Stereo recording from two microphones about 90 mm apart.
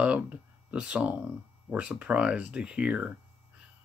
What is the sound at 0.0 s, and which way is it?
Speech, 15° right (ahead or behind).